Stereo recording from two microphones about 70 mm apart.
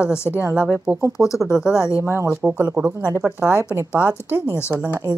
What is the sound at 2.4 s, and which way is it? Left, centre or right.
Speech, centre.